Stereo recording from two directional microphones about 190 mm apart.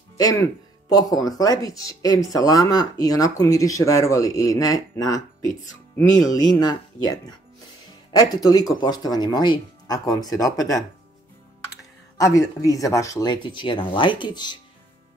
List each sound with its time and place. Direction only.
0.9 s speech: 20° left (ahead or behind)
12.2 s speech: 15° left (ahead or behind)